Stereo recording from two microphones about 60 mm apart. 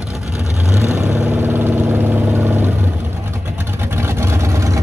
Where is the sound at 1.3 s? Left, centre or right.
Right.